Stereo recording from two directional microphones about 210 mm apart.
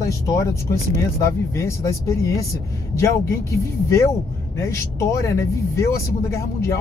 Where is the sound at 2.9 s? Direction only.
15° left (ahead or behind).